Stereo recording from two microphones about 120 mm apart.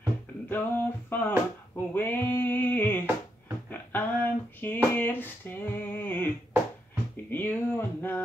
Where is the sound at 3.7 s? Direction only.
15° left (ahead or behind).